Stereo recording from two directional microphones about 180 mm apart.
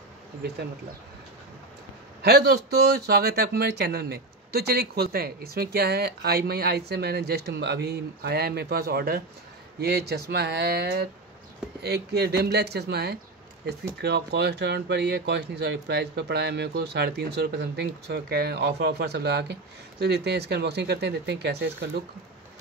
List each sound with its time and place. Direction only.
2.2 s speech: 65° right (ahead or behind)